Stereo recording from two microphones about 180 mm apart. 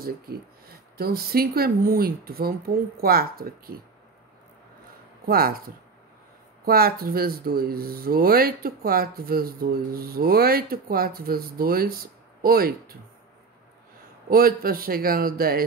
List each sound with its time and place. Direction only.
0.9 s speech: 55° right (ahead or behind)
5.2 s speech: 55° right (ahead or behind)
6.6 s speech: 55° right (ahead or behind)
14.3 s speech: 55° right (ahead or behind)